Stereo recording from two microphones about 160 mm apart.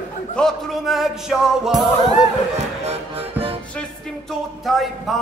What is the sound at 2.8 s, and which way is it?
Music, 40° right (ahead or behind).